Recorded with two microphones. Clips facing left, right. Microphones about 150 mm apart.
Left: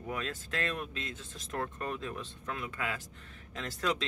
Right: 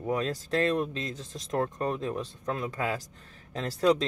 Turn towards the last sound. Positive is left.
turn(degrees=-35)  # may be behind; listen again after turning